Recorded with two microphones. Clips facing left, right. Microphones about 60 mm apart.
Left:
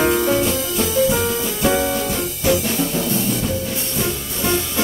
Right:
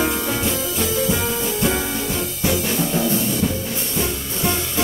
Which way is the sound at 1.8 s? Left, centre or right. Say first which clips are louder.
Left 5 dB; left.